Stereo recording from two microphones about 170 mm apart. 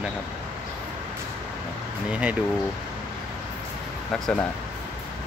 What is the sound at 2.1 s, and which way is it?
Speech, 10° right (ahead or behind).